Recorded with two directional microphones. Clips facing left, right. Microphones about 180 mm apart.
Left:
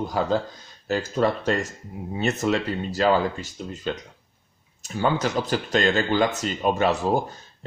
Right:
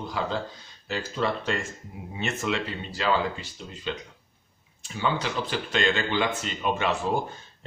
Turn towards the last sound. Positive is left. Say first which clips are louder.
# left 5 dB
turn(degrees=40)  # may be behind; listen again after turning